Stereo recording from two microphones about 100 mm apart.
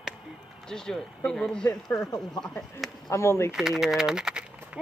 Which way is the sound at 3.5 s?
5° right (ahead or behind).